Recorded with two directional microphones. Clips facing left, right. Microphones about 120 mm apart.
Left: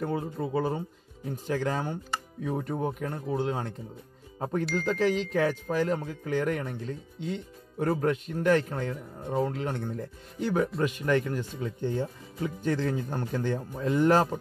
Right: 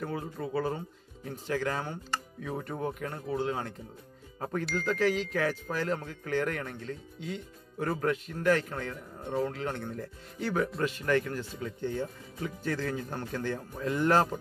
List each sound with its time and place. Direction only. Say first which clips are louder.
0.0 s speech: left 4 dB; 25° left (ahead or behind)